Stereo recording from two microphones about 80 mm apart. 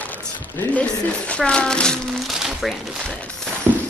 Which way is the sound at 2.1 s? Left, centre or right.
Centre.